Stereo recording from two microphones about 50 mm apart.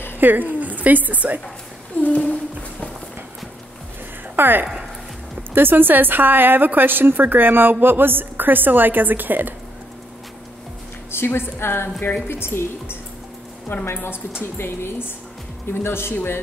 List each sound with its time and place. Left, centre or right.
0.2 s a woman's voice: right
2.0 s speech: left
4.4 s a woman's voice: right
11.1 s a woman's voice: left